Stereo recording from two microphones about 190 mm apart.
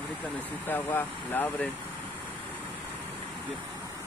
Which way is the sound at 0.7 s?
10° left (ahead or behind).